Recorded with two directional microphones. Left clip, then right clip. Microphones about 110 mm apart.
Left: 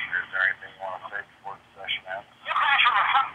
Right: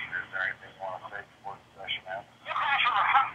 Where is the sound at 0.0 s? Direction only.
5° right (ahead or behind).